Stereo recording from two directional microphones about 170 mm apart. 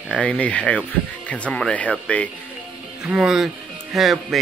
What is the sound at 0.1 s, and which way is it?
Speech, 5° left (ahead or behind).